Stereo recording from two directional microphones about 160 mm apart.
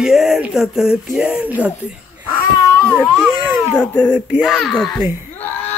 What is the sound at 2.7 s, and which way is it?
Baby cry, 5° left (ahead or behind).